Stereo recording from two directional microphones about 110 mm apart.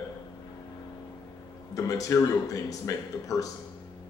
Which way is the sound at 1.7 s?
30° left (ahead or behind).